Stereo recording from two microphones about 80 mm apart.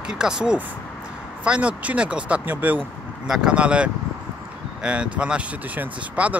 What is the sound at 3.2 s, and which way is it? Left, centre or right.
Speech, centre.